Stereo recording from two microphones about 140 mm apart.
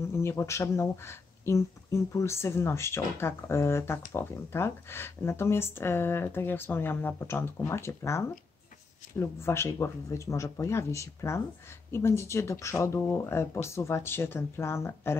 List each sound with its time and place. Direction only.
0.0 s speech: 20° left (ahead or behind)